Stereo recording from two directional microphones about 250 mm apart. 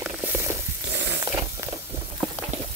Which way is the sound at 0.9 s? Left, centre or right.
Right.